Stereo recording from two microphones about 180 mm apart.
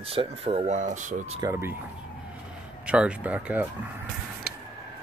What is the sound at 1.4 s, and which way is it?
Speech, 15° right (ahead or behind).